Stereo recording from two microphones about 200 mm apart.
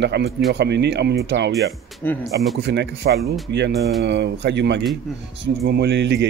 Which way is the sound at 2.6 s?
60° right (ahead or behind).